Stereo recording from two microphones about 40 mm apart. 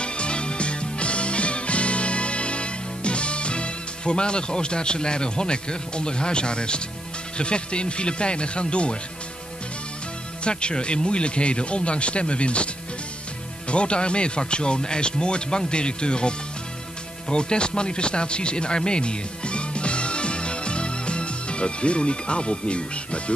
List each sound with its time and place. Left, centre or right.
0.0 s music: left
7.3 s speech: left
10.4 s speech: left
13.7 s speech: left